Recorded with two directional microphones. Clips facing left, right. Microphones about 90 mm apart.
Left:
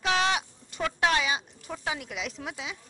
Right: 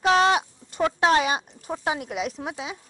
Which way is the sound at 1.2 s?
50° right (ahead or behind).